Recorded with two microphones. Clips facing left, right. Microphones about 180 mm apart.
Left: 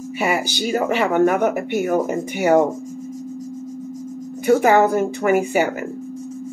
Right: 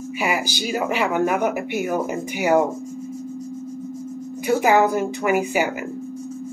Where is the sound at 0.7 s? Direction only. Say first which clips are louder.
Left 3 dB; 45° left (ahead or behind).